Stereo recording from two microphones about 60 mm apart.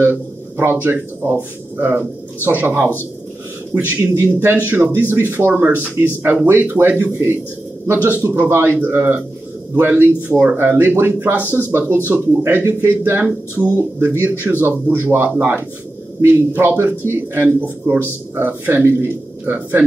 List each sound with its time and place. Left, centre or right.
0.0 s a man's voice: right